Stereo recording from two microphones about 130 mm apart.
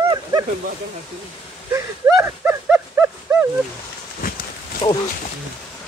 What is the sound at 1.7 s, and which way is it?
Dog, 15° right (ahead or behind).